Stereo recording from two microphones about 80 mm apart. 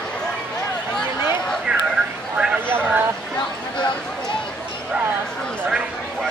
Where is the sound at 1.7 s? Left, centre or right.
Centre.